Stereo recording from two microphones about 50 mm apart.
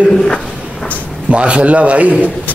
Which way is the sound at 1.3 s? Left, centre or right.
Right.